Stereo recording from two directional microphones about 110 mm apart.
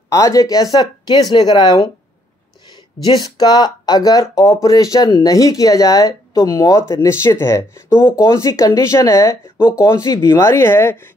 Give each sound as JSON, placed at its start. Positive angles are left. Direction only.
{"t": 0.1, "sound": "speech", "side_deg": 30}
{"t": 3.0, "sound": "speech", "side_deg": 40}